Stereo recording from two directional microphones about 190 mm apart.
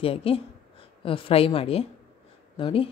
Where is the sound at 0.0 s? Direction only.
30° left (ahead or behind).